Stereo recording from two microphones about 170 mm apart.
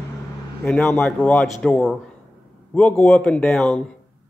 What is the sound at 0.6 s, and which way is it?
A man's voice, 5° left (ahead or behind).